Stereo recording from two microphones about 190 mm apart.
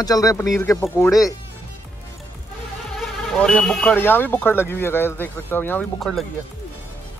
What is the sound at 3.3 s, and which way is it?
Speech, 5° left (ahead or behind).